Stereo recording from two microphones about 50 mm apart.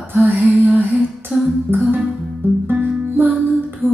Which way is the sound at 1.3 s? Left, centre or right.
Centre.